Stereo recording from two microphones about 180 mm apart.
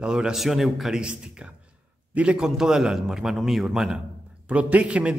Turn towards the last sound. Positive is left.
turn(degrees=-5)  # may be behind; listen again after turning